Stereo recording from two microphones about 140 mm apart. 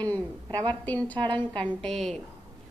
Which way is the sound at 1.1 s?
35° right (ahead or behind).